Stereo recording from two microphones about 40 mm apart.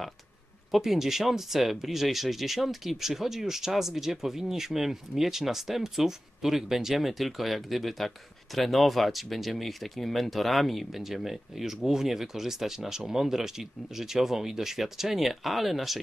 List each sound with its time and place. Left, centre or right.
0.7 s speech: centre